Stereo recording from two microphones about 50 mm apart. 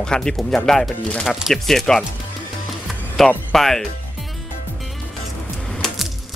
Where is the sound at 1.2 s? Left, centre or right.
Centre.